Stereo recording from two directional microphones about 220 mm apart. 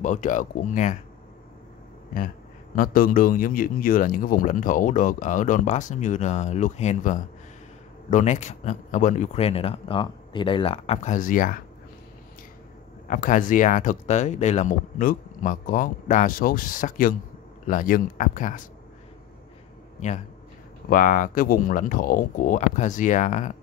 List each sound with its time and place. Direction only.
0.0 s speech: 35° left (ahead or behind)
2.1 s speech: 40° left (ahead or behind)
13.1 s speech: 35° left (ahead or behind)
20.9 s speech: 40° left (ahead or behind)